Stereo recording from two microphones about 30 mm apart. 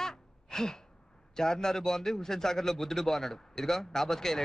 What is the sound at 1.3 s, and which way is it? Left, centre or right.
A man's voice, left.